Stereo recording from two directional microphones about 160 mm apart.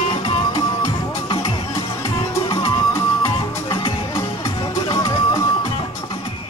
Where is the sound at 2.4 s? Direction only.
25° left (ahead or behind).